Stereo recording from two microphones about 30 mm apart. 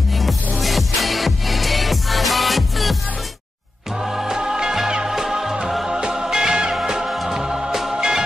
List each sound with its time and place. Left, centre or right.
0.2 s music: centre
4.0 s music: centre
5.9 s music: right